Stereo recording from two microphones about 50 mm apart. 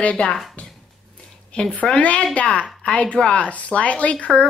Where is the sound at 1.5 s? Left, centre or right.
Left.